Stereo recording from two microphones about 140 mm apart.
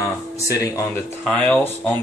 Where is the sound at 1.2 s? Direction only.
10° left (ahead or behind).